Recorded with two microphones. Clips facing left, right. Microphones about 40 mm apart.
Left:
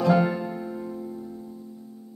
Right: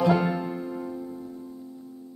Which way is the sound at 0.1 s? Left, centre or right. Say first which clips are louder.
Left 2 dB; centre.